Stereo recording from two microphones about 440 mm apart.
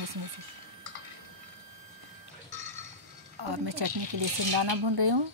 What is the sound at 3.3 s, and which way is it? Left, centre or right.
Speech, right.